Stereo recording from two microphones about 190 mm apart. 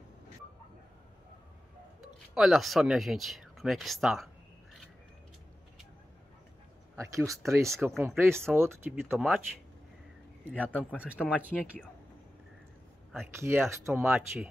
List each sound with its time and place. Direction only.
2.3 s speech: centre (ahead or behind)
7.0 s speech: 15° right (ahead or behind)
10.5 s speech: 5° left (ahead or behind)
11.0 s speech: 5° right (ahead or behind)
13.1 s speech: 10° right (ahead or behind)